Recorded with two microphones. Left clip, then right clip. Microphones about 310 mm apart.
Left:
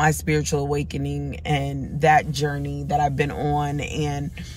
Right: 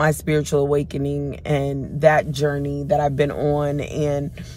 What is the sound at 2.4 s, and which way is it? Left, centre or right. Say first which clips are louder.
Speech: right 5 dB; left.